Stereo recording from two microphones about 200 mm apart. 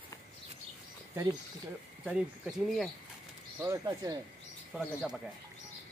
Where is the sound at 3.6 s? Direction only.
15° right (ahead or behind).